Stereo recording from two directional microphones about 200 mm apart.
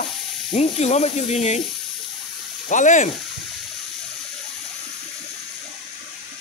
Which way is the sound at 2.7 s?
40° left (ahead or behind).